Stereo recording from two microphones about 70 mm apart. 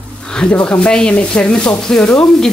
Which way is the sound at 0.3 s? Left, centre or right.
Centre.